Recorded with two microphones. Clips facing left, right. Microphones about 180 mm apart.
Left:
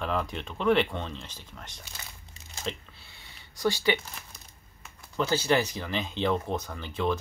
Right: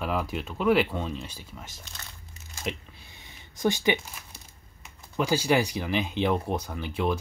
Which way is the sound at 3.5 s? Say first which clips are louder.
Right 1 dB; 20° right (ahead or behind).